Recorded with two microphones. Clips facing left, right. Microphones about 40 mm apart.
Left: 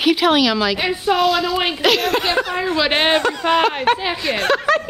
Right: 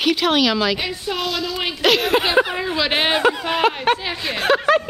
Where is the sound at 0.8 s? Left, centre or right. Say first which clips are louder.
Left 5 dB; centre.